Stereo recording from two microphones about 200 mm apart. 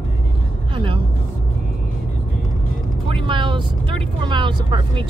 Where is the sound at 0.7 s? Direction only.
25° right (ahead or behind).